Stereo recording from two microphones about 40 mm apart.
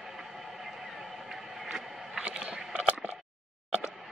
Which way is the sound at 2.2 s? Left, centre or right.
Right.